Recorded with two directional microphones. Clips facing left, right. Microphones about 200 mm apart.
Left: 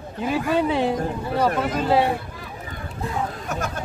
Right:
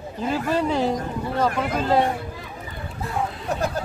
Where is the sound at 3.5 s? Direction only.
35° right (ahead or behind).